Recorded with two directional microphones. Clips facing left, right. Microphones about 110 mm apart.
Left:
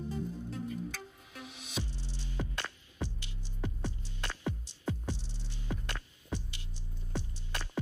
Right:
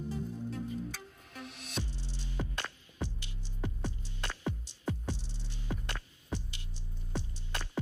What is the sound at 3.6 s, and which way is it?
Hum, 15° right (ahead or behind).